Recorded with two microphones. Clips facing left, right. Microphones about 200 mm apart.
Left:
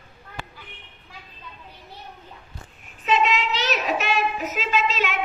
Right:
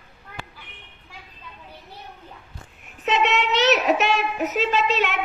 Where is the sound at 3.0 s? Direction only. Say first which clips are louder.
Even; 65° right (ahead or behind).